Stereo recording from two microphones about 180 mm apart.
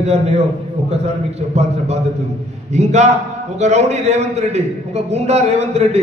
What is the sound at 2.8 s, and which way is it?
A man's voice, 40° right (ahead or behind).